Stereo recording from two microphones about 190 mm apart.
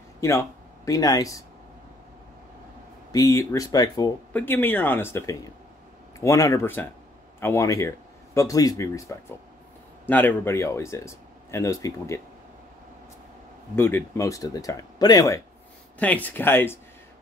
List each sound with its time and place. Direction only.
0.2 s speech: 15° left (ahead or behind)
3.1 s speech: 15° left (ahead or behind)
10.0 s speech: 10° left (ahead or behind)
13.7 s speech: 10° left (ahead or behind)
16.0 s speech: 10° left (ahead or behind)